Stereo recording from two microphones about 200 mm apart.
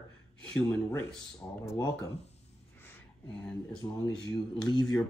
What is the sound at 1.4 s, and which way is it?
Speech, 20° left (ahead or behind).